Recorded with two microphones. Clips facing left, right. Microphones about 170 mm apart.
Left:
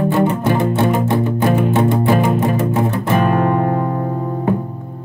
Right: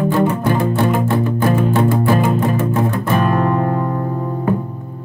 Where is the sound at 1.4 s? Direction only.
20° left (ahead or behind).